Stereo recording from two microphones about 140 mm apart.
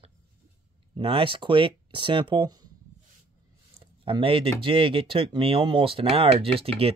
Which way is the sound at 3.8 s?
40° right (ahead or behind).